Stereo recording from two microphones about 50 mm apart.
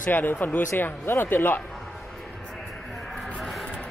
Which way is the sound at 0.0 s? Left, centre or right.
Left.